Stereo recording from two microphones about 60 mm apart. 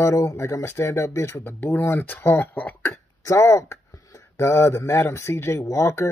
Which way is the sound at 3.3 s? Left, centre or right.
Left.